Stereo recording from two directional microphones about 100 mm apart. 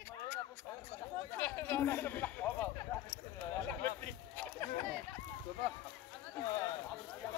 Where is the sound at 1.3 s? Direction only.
20° left (ahead or behind).